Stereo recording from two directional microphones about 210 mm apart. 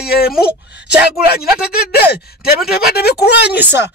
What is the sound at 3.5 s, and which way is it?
Speech, 10° right (ahead or behind).